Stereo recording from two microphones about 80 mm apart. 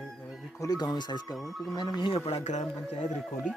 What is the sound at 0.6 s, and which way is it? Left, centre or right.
Speech, left.